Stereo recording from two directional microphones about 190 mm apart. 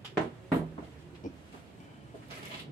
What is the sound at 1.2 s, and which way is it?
Train, 40° left (ahead or behind).